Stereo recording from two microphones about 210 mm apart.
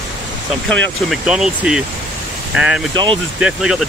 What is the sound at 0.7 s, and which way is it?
Speech, 5° left (ahead or behind).